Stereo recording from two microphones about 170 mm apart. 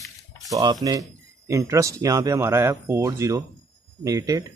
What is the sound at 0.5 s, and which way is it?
Speech, 25° right (ahead or behind).